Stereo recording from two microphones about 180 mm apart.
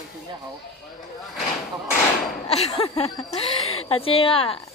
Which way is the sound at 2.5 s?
35° left (ahead or behind).